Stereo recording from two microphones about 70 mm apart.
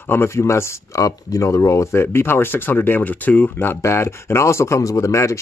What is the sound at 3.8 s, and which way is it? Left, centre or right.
Speech, left.